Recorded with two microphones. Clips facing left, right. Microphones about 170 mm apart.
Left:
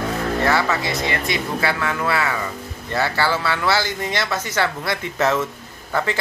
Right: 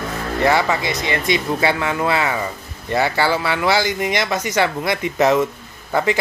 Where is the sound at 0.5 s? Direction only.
20° right (ahead or behind).